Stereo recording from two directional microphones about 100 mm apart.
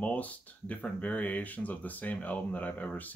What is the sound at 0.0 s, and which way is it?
Speech, 15° left (ahead or behind).